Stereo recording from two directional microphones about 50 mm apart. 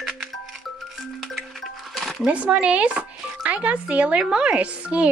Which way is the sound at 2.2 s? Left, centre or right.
Right.